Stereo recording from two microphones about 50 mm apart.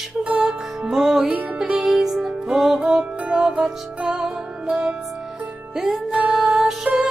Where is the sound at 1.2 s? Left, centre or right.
Right.